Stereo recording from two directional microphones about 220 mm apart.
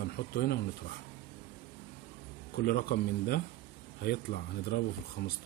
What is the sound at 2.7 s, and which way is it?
Speech, 45° left (ahead or behind).